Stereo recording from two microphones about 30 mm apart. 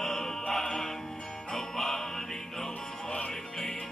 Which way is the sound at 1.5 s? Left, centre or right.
Centre.